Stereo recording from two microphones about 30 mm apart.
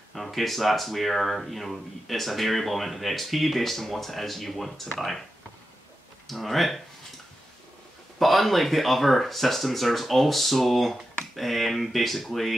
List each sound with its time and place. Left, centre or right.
0.1 s speech: centre
6.2 s speech: centre
8.2 s speech: centre